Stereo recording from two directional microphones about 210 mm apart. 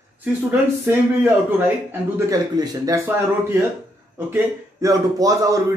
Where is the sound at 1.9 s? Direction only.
15° right (ahead or behind).